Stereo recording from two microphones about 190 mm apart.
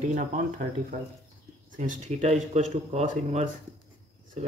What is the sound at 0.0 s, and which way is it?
Speech, 40° right (ahead or behind).